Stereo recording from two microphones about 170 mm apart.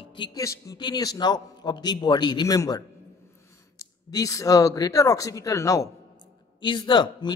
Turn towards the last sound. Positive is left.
turn(degrees=25)  # may be behind; listen again after turning